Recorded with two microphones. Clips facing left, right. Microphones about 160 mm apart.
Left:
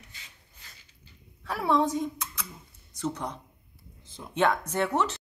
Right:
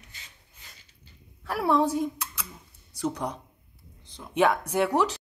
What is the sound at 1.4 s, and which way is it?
Speech, 5° right (ahead or behind).